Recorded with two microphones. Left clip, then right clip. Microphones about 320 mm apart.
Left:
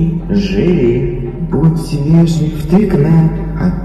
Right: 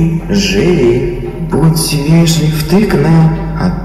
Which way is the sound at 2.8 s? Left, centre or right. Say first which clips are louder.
Right 2 dB; right.